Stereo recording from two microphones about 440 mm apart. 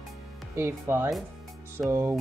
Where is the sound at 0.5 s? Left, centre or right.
Centre.